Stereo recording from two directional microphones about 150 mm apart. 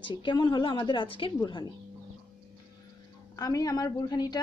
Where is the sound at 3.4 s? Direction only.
25° left (ahead or behind).